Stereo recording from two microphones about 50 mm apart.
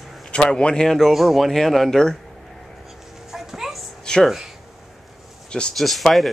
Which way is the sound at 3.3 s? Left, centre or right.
Centre.